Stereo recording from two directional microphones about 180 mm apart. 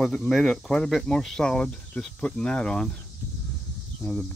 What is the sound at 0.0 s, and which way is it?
Speech, centre (ahead or behind).